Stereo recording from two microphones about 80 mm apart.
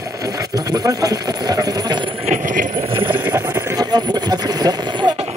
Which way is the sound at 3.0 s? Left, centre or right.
Right.